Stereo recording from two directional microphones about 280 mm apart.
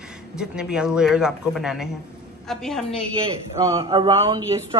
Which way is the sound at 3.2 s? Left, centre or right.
Centre.